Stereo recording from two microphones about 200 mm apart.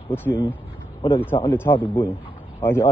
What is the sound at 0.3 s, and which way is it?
Speech, 10° right (ahead or behind).